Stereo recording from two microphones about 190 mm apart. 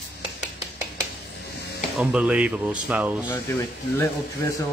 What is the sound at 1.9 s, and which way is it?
Speech, 5° right (ahead or behind).